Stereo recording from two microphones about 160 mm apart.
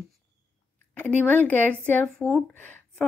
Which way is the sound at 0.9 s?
10° left (ahead or behind).